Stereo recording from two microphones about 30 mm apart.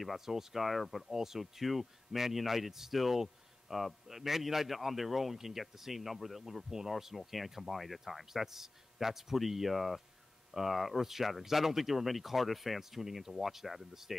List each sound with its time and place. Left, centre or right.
0.2 s speech: centre
0.7 s a man's voice: centre
1.1 s a man's voice: centre
8.3 s speech: centre